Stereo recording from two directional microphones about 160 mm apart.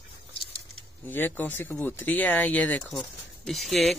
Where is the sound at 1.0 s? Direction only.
10° left (ahead or behind).